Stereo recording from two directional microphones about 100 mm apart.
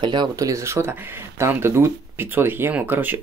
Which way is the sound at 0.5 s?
30° right (ahead or behind).